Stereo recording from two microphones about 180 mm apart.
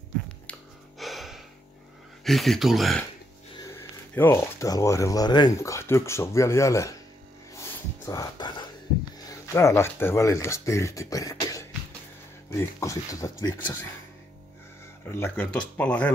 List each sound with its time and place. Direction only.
0.5 s gasp: centre (ahead or behind)
2.2 s speech: centre (ahead or behind)
3.5 s speech: 15° left (ahead or behind)
7.5 s a sound: 20° left (ahead or behind)
9.3 s speech: 15° left (ahead or behind)
15.0 s speech: 15° left (ahead or behind)